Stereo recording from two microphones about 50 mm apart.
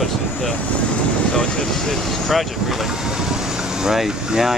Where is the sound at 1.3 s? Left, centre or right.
Centre.